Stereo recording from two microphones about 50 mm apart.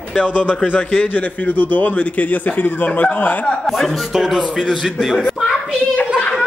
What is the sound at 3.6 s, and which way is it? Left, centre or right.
A man's voice, centre.